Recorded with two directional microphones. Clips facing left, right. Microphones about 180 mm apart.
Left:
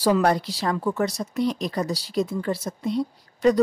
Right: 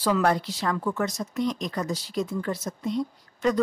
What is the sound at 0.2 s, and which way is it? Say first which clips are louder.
Speech: left 2 dB; 35° left (ahead or behind).